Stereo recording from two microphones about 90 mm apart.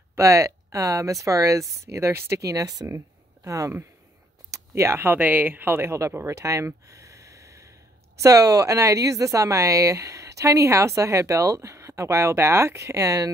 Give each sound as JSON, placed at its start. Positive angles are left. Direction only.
{"t": 0.1, "sound": "speech", "side_deg": -35}